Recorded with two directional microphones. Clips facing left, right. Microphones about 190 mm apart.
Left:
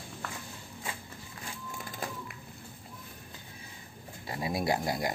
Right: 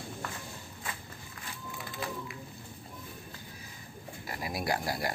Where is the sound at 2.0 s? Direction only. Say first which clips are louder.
Right 1 dB; 45° left (ahead or behind).